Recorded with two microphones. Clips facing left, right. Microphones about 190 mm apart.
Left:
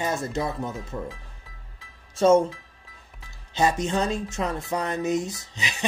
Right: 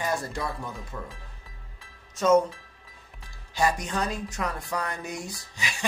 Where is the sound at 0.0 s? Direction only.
25° left (ahead or behind).